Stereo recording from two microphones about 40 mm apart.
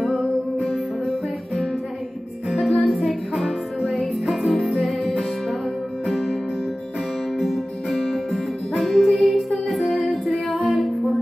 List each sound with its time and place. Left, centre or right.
0.6 s music: centre
2.5 s music: centre
4.5 s music: centre
7.4 s music: centre
9.9 s female singing: centre
10.5 s female singing: right